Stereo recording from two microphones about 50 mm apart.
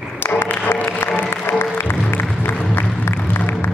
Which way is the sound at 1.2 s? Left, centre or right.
Left.